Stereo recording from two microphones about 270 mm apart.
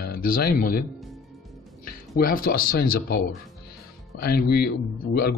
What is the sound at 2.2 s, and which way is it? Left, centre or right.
Speech, left.